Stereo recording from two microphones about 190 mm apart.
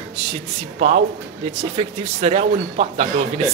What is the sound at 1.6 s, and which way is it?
Speech, 35° right (ahead or behind).